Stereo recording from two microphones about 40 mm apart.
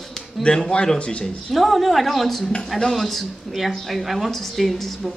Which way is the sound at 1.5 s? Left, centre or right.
Centre.